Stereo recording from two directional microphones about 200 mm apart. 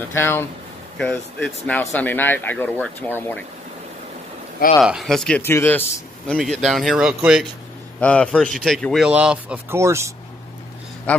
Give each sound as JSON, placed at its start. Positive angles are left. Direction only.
{"t": 0.1, "sound": "speech", "side_deg": 10}
{"t": 4.7, "sound": "speech", "side_deg": 0}
{"t": 11.1, "sound": "speech", "side_deg": 5}